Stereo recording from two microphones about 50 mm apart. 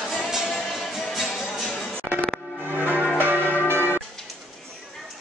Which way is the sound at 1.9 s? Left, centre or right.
Right.